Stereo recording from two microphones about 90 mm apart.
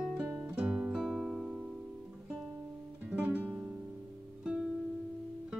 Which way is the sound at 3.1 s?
15° right (ahead or behind).